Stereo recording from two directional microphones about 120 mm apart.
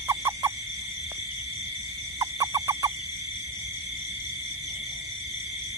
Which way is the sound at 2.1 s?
30° right (ahead or behind).